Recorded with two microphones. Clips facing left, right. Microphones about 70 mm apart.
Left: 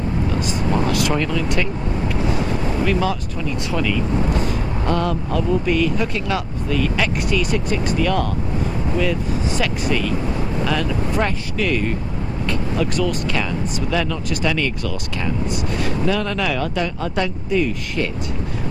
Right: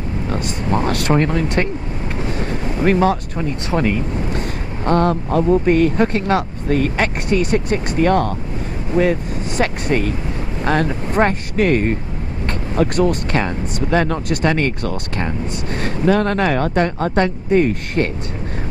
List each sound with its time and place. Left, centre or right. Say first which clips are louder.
0.3 s speech: right 4 dB; right
2.8 s speech: right 7 dB; right